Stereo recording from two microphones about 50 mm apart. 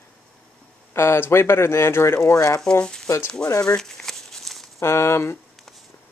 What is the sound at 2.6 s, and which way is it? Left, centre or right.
Speech, centre.